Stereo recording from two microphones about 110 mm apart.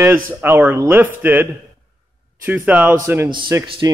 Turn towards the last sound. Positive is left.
turn(degrees=-30)  # may be behind; listen again after turning